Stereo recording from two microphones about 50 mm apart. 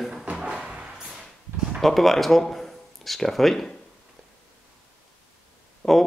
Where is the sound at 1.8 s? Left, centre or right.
Centre.